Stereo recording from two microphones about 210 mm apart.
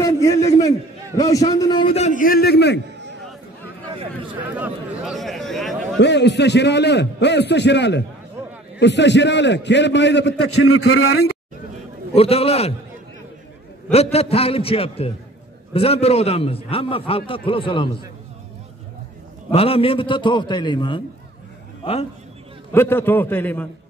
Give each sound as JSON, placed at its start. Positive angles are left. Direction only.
{"t": 0.0, "sound": "a man's voice", "side_deg": 15}
{"t": 4.4, "sound": "speech", "side_deg": -10}
{"t": 5.9, "sound": "a man's voice", "side_deg": 55}
{"t": 10.6, "sound": "a man's voice", "side_deg": 90}
{"t": 12.1, "sound": "a man's voice", "side_deg": 30}
{"t": 14.1, "sound": "a man's voice", "side_deg": 30}
{"t": 19.5, "sound": "a man's voice", "side_deg": 25}
{"t": 22.7, "sound": "a man's voice", "side_deg": 10}